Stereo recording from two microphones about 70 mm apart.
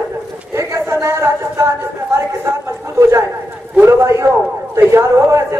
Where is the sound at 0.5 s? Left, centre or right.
Right.